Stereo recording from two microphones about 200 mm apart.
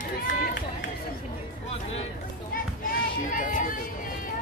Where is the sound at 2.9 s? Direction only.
40° left (ahead or behind).